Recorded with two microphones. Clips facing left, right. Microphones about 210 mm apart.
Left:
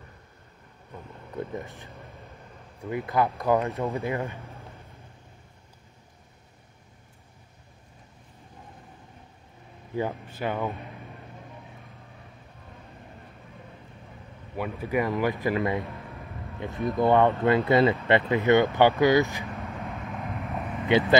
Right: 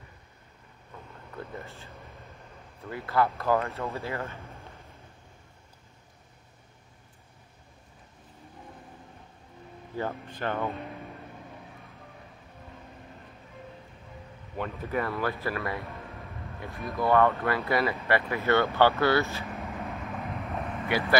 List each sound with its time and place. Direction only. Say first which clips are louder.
1.3 s speech: left 6 dB; 15° left (ahead or behind)
9.9 s speech: left 3 dB; 10° left (ahead or behind)
14.6 s speech: left 4 dB; 10° left (ahead or behind)
19.5 s vehicle: even; centre (ahead or behind)
20.9 s speech: left 7 dB; 20° left (ahead or behind)